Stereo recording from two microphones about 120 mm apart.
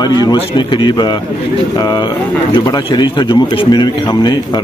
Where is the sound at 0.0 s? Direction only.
35° left (ahead or behind).